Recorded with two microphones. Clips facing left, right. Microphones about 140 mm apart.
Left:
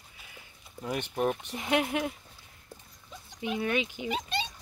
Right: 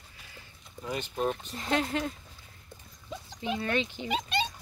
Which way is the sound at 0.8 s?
60° left (ahead or behind).